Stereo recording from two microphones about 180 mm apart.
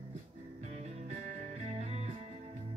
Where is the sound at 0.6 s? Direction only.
40° right (ahead or behind).